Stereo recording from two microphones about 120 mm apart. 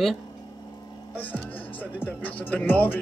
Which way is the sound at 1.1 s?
15° left (ahead or behind).